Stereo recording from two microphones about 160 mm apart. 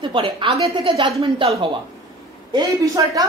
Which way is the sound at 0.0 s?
30° right (ahead or behind).